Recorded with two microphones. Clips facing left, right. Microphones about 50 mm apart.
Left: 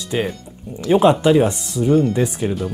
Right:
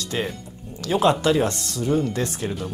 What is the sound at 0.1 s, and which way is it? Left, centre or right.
Speech, centre.